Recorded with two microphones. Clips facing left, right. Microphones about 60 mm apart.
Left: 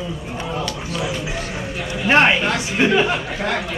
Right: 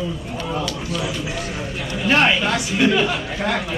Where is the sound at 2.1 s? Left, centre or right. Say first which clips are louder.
Left 2 dB; left.